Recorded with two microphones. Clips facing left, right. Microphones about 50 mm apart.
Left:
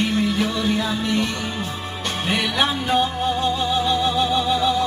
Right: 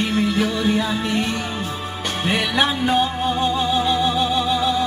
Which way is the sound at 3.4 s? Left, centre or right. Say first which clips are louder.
Right 3 dB; centre.